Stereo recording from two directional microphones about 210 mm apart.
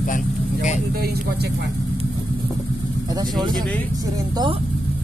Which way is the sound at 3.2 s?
20° right (ahead or behind).